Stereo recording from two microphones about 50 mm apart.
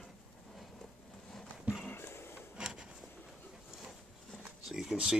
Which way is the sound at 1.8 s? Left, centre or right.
Left.